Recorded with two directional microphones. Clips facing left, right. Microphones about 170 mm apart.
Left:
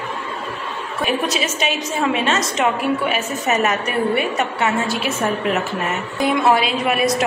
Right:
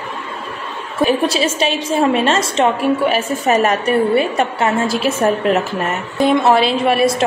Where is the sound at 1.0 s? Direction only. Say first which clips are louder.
Right 6 dB; 30° right (ahead or behind).